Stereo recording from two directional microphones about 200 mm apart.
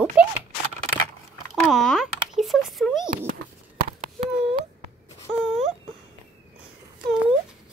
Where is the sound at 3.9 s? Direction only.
40° right (ahead or behind).